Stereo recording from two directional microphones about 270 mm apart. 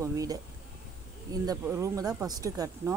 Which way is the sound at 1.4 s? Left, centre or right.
Centre.